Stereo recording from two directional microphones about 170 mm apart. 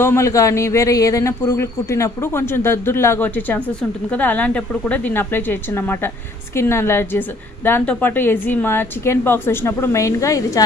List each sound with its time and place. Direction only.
0.0 s speech: 15° left (ahead or behind)